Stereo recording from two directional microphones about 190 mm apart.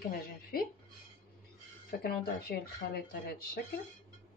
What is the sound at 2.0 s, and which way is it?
Speech, 55° left (ahead or behind).